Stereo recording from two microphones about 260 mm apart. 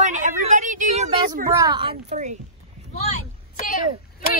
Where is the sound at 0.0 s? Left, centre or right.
Right.